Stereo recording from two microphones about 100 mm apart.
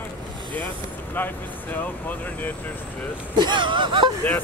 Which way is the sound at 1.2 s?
20° left (ahead or behind).